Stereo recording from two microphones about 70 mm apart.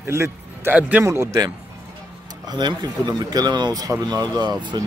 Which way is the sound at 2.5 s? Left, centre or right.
Right.